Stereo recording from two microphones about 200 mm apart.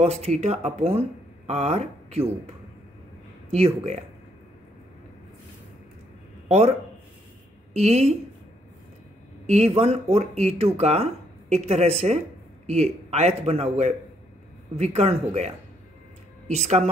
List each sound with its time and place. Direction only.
0.0 s speech: 30° right (ahead or behind)
3.5 s speech: 30° right (ahead or behind)
7.7 s speech: 35° right (ahead or behind)
9.5 s speech: 30° right (ahead or behind)